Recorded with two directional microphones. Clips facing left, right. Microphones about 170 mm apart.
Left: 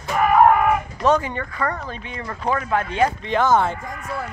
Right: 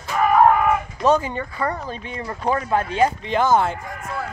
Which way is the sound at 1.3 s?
15° right (ahead or behind).